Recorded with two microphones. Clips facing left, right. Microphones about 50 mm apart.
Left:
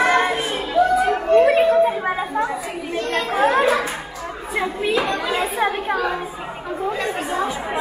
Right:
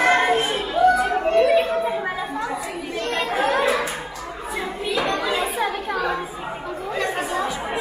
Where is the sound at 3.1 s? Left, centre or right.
Left.